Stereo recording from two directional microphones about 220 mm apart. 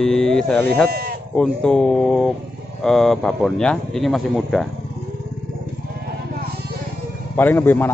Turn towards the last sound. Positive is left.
turn(degrees=10)  # may be behind; listen again after turning